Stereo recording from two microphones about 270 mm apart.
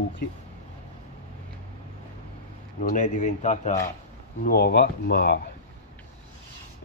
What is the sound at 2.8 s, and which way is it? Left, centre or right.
Speech, left.